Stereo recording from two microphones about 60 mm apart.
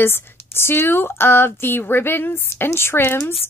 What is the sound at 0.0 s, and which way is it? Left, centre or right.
A woman's voice, left.